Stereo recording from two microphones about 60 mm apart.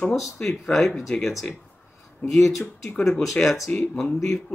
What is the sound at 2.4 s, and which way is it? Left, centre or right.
Speech, left.